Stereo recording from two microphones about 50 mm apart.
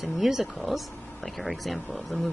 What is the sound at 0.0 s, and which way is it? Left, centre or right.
Speech, centre.